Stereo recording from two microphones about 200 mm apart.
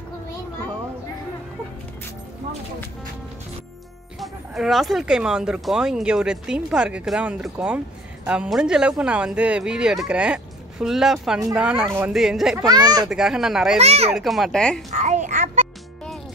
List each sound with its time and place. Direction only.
4.2 s speech: centre (ahead or behind)
12.1 s speech: centre (ahead or behind)
12.6 s speech: 20° right (ahead or behind)
13.1 s speech: centre (ahead or behind)
13.7 s speech: 30° right (ahead or behind)
14.1 s speech: centre (ahead or behind)
14.9 s a child's voice: 35° right (ahead or behind)